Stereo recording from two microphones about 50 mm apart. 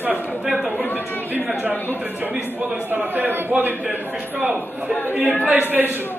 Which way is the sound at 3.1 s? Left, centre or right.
Right.